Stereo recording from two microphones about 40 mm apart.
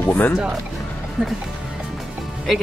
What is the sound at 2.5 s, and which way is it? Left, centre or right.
Speech, centre.